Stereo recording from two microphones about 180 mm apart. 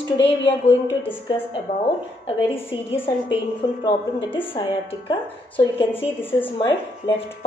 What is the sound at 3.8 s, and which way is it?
Speech, 30° left (ahead or behind).